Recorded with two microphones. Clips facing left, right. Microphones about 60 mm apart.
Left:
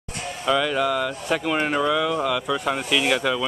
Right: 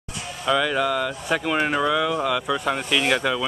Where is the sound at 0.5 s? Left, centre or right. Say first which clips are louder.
Even; centre.